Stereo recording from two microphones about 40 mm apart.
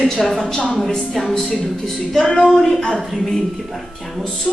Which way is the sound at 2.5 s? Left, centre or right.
Centre.